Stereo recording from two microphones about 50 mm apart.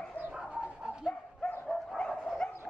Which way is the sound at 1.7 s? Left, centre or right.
Centre.